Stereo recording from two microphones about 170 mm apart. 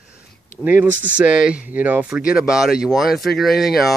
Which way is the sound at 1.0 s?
5° right (ahead or behind).